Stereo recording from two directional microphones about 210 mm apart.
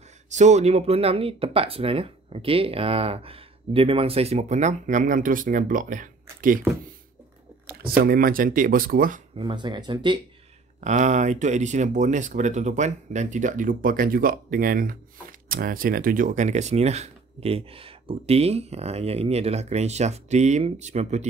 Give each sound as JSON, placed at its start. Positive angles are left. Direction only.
{"t": 0.3, "sound": "speech", "side_deg": -35}
{"t": 7.6, "sound": "speech", "side_deg": -45}
{"t": 9.4, "sound": "speech", "side_deg": -20}
{"t": 10.8, "sound": "speech", "side_deg": -35}